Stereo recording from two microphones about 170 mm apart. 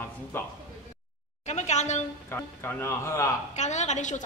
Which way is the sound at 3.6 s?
45° left (ahead or behind).